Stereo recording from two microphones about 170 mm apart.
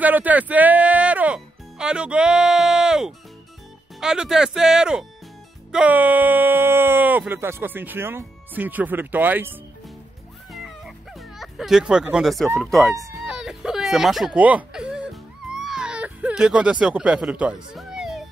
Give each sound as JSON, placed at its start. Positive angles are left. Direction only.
{"t": 0.0, "sound": "speech", "side_deg": -10}
{"t": 10.5, "sound": "cat", "side_deg": 0}
{"t": 12.5, "sound": "speech", "side_deg": 0}
{"t": 15.5, "sound": "baby cry", "side_deg": -5}